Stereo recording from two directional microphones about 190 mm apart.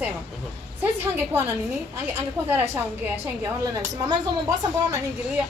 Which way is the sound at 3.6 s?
20° right (ahead or behind).